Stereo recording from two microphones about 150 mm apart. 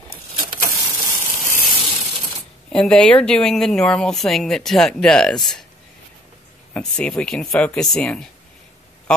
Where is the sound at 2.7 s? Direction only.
5° left (ahead or behind).